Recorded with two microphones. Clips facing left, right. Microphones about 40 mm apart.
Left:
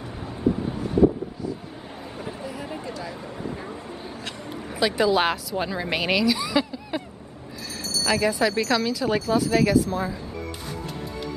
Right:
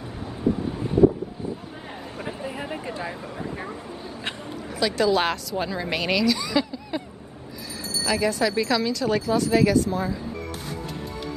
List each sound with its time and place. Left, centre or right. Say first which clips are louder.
0.2 s vehicle: even; centre
2.1 s a sound: right 2 dB; right
3.2 s vehicle: even; centre
4.5 s a woman's voice: left 2 dB; centre
7.8 s vehicle: left 1 dB; right
8.1 s speech: left 1 dB; centre